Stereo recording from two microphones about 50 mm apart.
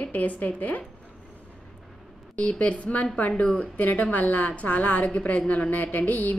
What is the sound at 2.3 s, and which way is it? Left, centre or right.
A woman's voice, left.